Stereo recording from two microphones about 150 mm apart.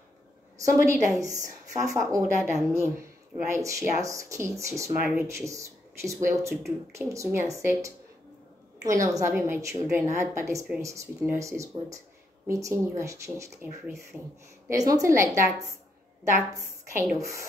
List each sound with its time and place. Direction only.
0.7 s a woman's voice: 20° right (ahead or behind)
17.2 s a woman's voice: 20° right (ahead or behind)